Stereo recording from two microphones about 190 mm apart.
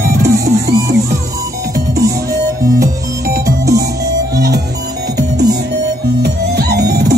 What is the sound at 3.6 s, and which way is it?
Music, 15° right (ahead or behind).